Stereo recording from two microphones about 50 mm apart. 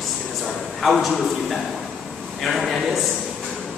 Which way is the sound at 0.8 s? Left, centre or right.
Centre.